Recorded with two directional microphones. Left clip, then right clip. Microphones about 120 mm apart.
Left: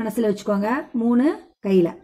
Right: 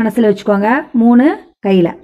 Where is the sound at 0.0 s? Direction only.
35° right (ahead or behind).